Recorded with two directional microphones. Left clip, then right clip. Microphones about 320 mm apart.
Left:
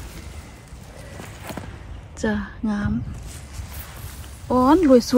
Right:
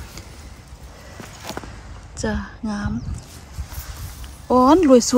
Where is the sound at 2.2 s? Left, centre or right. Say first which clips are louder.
Left 1 dB; centre.